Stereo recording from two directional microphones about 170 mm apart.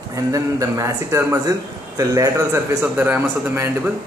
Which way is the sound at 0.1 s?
20° right (ahead or behind).